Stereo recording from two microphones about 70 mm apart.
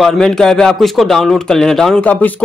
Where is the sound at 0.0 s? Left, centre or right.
Centre.